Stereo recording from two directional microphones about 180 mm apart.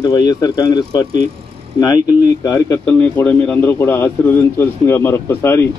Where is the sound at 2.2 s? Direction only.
20° left (ahead or behind).